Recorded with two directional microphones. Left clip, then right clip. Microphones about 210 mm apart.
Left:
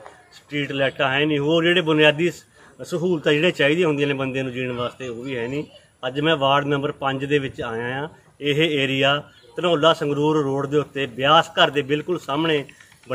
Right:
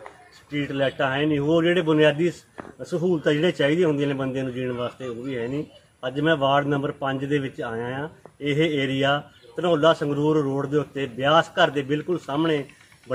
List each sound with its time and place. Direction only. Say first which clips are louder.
0.5 s a man's voice: left 2 dB; 15° left (ahead or behind)
5.9 s a man's voice: left 2 dB; 15° left (ahead or behind)